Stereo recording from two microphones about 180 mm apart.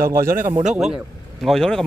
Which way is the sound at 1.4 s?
5° left (ahead or behind).